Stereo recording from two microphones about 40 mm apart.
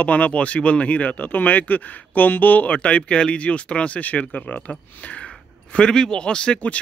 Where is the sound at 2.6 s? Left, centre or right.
Left.